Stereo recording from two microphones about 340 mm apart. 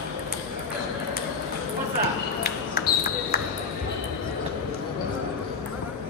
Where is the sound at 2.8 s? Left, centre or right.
Left.